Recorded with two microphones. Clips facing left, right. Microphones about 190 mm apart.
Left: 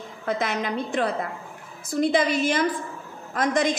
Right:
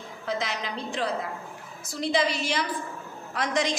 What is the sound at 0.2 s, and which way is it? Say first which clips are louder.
A woman's voice: left 5 dB; 55° left (ahead or behind).